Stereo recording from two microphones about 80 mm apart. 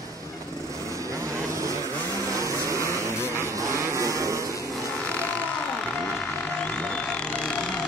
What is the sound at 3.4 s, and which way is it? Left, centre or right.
Livestock, right.